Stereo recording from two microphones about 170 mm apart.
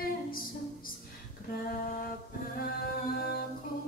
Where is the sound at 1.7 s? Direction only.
60° left (ahead or behind).